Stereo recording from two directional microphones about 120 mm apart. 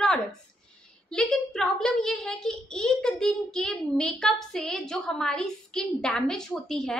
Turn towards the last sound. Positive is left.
turn(degrees=5)  # may be behind; listen again after turning